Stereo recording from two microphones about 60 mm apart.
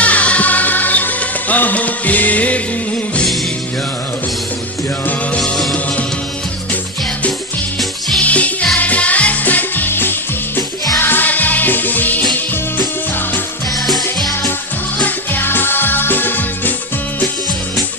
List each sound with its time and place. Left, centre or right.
0.0 s music: left
5.4 s music: centre
8.2 s music: left
13.7 s music: centre
15.0 s music: left